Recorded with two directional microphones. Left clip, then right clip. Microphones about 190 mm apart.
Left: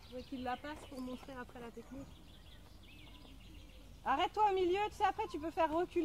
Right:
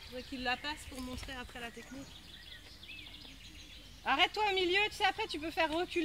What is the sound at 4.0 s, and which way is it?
Speech, 45° right (ahead or behind).